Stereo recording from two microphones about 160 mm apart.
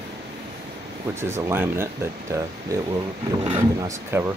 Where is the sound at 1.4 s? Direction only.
15° right (ahead or behind).